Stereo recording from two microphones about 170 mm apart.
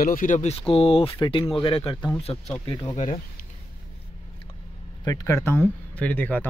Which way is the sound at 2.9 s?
40° left (ahead or behind).